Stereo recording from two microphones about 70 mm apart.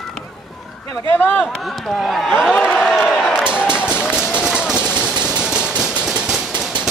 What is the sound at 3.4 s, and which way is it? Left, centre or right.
Basketball bounce, centre.